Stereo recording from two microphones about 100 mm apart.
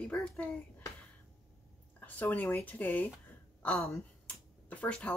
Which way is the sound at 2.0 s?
15° left (ahead or behind).